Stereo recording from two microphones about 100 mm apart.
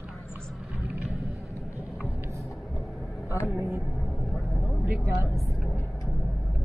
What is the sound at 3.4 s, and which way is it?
Speech, 20° left (ahead or behind).